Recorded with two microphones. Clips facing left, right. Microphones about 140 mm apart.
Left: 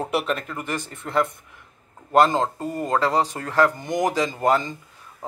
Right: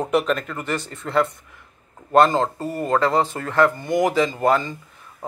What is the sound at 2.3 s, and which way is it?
Speech, 15° left (ahead or behind).